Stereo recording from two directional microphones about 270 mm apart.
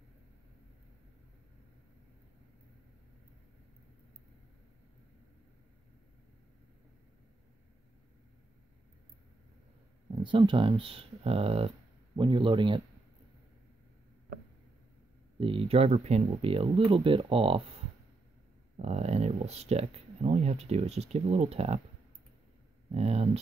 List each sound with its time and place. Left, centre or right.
10.1 s speech: centre
15.3 s speech: centre
18.8 s speech: right
22.8 s speech: right